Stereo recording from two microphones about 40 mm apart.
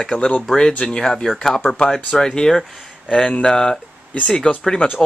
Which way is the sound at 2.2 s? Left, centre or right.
Centre.